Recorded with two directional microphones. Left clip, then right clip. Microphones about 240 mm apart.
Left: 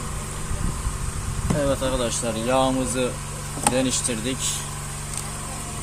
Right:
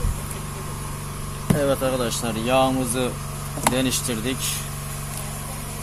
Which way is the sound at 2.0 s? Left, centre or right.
Right.